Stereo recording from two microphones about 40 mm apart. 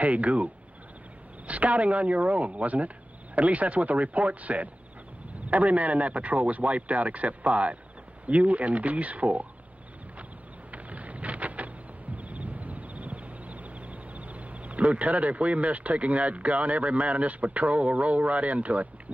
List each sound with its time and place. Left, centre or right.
0.0 s speech: right
1.5 s speech: right
10.7 s a sound: right